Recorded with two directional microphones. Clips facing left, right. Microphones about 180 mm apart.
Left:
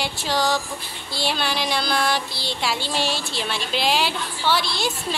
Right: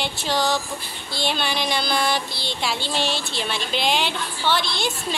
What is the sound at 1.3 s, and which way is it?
Speech, 5° left (ahead or behind).